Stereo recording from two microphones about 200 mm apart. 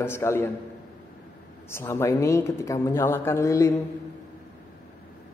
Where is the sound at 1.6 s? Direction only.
10° left (ahead or behind).